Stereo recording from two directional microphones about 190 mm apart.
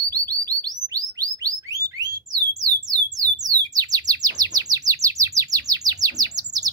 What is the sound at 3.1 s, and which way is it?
Bird, 20° right (ahead or behind).